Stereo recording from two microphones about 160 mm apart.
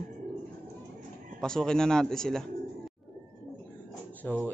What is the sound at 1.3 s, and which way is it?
Music, 5° left (ahead or behind).